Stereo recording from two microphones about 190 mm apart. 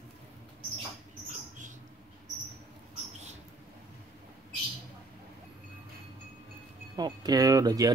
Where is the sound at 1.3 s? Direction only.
40° right (ahead or behind).